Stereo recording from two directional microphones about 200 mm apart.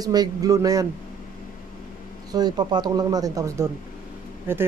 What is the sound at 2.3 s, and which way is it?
Speech, 20° right (ahead or behind).